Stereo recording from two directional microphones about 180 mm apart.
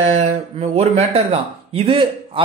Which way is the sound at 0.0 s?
40° right (ahead or behind).